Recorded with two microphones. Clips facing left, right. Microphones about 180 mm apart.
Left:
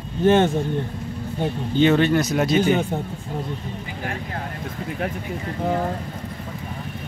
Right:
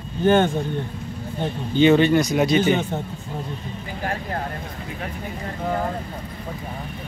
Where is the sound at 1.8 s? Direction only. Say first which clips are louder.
Right 2 dB; centre (ahead or behind).